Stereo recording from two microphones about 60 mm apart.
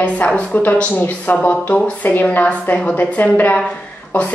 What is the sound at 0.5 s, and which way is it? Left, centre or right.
Speech, left.